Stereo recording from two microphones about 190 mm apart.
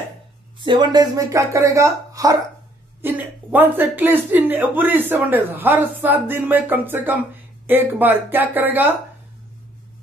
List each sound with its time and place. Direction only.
0.7 s speech: 20° right (ahead or behind)